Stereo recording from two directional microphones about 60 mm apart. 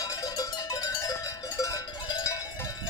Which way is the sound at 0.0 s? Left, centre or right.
Left.